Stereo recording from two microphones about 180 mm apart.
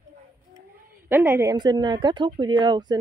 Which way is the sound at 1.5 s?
25° right (ahead or behind).